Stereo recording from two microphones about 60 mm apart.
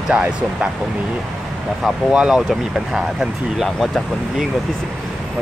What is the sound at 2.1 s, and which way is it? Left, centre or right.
Speech, centre.